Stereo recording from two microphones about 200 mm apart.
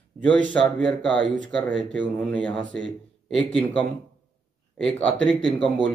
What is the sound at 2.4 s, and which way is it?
Speech, 5° left (ahead or behind).